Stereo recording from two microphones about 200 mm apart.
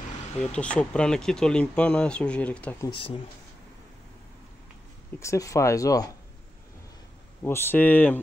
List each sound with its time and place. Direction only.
0.4 s speech: 5° left (ahead or behind)
2.9 s speech: 25° left (ahead or behind)
5.2 s speech: 15° left (ahead or behind)
7.4 s speech: 10° left (ahead or behind)